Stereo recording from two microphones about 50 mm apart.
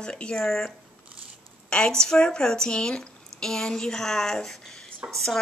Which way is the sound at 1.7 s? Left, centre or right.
Centre.